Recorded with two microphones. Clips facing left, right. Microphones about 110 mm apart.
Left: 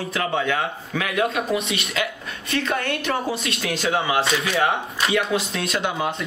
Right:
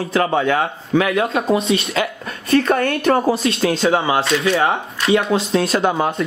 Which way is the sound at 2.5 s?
45° right (ahead or behind).